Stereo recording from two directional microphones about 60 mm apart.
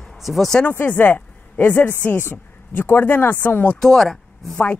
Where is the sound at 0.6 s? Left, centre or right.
Left.